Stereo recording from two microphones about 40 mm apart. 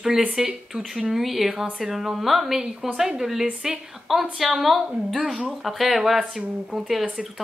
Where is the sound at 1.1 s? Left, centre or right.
Centre.